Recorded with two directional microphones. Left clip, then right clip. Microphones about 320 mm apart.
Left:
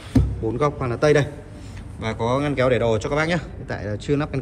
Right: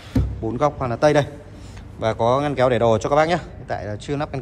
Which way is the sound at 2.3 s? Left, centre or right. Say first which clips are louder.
Even; centre.